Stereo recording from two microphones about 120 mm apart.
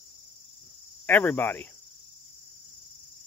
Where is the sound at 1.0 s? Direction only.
15° left (ahead or behind).